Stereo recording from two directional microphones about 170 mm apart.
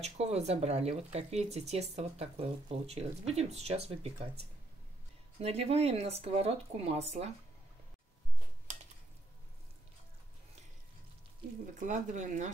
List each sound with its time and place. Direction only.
0.0 s speech: 40° right (ahead or behind)
11.8 s speech: 50° right (ahead or behind)